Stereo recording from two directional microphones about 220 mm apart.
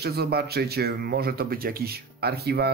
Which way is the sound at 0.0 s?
45° right (ahead or behind).